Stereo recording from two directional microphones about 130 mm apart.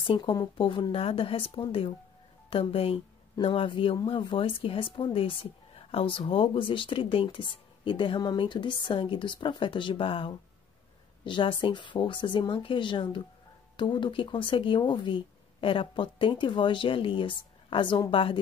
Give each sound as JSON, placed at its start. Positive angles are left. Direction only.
{"t": 0.0, "sound": "speech", "side_deg": 40}